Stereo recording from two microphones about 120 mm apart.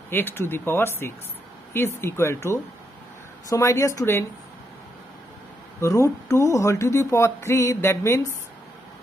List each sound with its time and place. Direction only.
0.1 s speech: 20° left (ahead or behind)
5.8 s speech: 25° left (ahead or behind)